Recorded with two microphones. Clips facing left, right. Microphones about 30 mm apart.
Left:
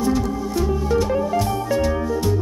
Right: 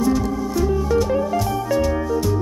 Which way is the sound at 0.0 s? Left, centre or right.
Centre.